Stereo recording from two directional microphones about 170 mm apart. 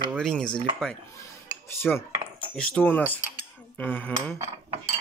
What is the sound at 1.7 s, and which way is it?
Speech, 15° left (ahead or behind).